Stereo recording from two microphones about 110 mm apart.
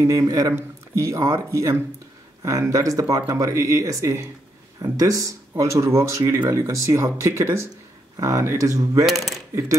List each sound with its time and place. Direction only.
0.0 s speech: 30° right (ahead or behind)
9.0 s speech: centre (ahead or behind)